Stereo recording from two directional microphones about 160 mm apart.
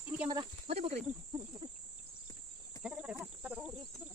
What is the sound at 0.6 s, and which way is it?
Speech, 40° right (ahead or behind).